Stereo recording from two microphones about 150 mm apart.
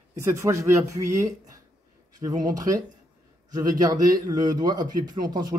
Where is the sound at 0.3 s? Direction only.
20° right (ahead or behind).